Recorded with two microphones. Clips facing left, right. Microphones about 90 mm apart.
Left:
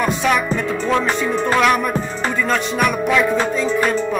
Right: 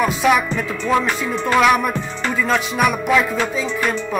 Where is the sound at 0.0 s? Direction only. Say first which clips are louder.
Right 1 dB; 5° right (ahead or behind).